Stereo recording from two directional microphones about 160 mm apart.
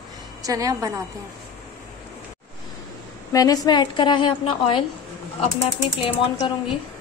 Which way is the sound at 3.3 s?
25° left (ahead or behind).